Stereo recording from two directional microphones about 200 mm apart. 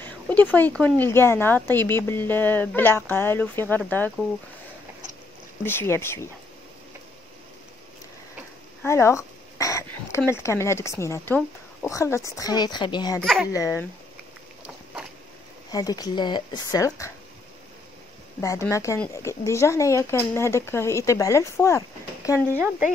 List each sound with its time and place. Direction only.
0.0 s speech: 10° left (ahead or behind)
5.6 s speech: 10° left (ahead or behind)
8.8 s speech: 15° left (ahead or behind)
13.2 s speech: centre (ahead or behind)
13.5 s speech: 15° left (ahead or behind)
15.7 s speech: 20° left (ahead or behind)
18.4 s speech: 15° left (ahead or behind)
22.5 s speech: 10° right (ahead or behind)